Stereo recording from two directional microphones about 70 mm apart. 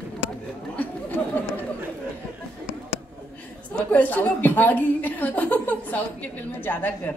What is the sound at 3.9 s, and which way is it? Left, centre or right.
A woman's voice, left.